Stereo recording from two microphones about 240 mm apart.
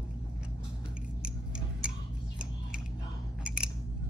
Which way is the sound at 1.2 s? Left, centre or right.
Centre.